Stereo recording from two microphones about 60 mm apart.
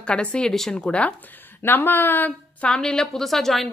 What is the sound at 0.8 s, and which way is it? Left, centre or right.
Speech, left.